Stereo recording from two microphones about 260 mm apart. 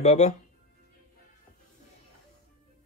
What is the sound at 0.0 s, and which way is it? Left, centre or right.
Speech, left.